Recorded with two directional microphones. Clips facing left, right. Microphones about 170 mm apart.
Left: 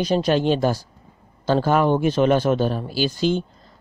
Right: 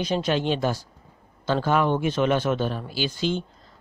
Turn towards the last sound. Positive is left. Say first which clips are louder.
# left 5 dB
turn(degrees=40)  # may be behind; listen again after turning